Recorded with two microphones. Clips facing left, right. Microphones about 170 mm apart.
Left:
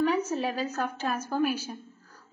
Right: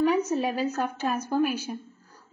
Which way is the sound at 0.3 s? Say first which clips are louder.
Right 3 dB; 15° right (ahead or behind).